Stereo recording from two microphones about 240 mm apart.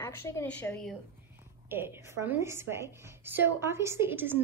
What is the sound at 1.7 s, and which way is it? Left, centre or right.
A woman's voice, centre.